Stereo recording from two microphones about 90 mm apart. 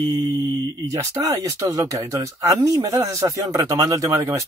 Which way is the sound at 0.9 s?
40° right (ahead or behind).